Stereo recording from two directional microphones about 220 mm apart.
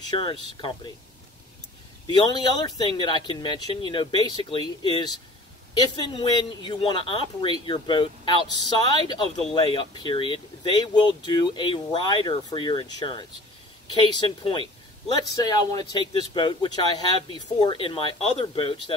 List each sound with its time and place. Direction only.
0.2 s speech: 25° left (ahead or behind)
2.0 s speech: 20° left (ahead or behind)
6.1 s speech: 20° left (ahead or behind)